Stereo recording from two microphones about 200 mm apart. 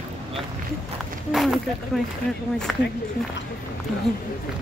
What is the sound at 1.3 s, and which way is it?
Speech, centre (ahead or behind).